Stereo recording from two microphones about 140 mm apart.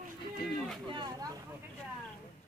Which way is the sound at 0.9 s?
35° right (ahead or behind).